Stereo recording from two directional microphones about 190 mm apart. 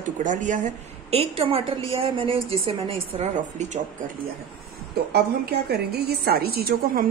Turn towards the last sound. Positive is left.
turn(degrees=-55)  # may be behind; listen again after turning